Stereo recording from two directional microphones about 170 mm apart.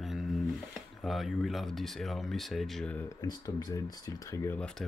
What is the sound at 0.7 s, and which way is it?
Speech, centre (ahead or behind).